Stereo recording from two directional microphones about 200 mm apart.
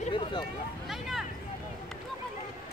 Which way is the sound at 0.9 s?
Centre (ahead or behind).